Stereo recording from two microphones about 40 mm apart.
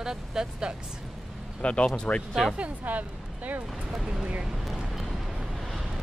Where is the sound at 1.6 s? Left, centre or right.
Left.